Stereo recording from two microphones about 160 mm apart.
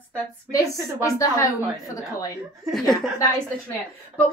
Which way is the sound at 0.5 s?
20° left (ahead or behind).